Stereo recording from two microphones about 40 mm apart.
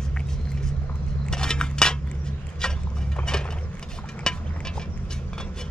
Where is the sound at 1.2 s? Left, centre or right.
Centre.